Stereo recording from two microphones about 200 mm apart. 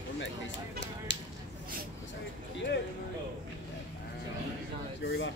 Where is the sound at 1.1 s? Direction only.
60° left (ahead or behind).